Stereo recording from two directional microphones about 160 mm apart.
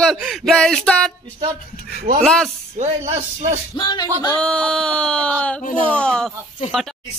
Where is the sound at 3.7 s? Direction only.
30° left (ahead or behind).